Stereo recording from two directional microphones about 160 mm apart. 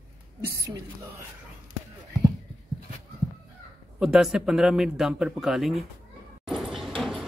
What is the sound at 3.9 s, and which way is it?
A man's voice, 5° right (ahead or behind).